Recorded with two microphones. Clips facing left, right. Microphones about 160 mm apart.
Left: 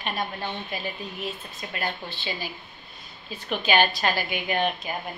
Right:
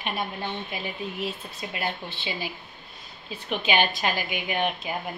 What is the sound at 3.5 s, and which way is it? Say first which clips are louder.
A woman's voice: left 2 dB; 20° right (ahead or behind).